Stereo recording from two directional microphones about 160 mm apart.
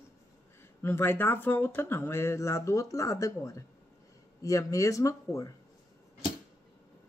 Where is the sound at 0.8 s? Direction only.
15° left (ahead or behind).